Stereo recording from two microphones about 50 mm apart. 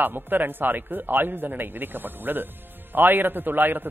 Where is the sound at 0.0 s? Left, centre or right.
Right.